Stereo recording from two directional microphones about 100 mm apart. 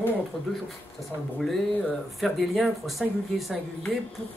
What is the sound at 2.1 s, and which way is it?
Speech, centre (ahead or behind).